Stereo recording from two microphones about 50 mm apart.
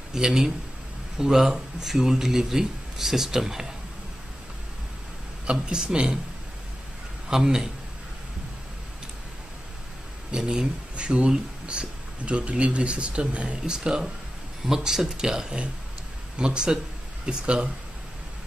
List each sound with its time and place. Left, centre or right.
0.1 s speech: centre
5.5 s speech: centre
7.2 s speech: centre
10.3 s speech: centre